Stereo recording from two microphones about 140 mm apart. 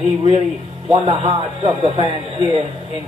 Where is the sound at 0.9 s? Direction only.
40° right (ahead or behind).